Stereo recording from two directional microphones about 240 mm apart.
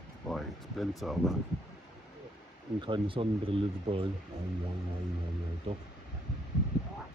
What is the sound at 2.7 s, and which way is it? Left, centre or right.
Speech, centre.